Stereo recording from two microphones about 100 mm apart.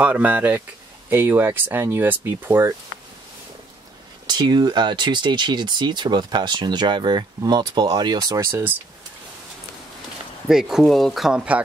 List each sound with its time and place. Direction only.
0.0 s speech: 15° right (ahead or behind)
4.3 s speech: 45° right (ahead or behind)
8.5 s speech: 25° right (ahead or behind)
10.5 s speech: 5° right (ahead or behind)